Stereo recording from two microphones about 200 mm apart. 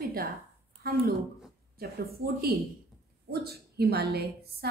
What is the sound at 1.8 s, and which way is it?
A woman's voice, 50° right (ahead or behind).